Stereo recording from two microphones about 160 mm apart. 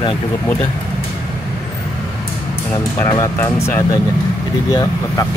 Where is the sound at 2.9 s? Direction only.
20° left (ahead or behind).